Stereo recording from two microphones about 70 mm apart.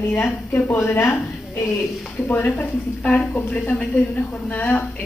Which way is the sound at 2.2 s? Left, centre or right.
Left.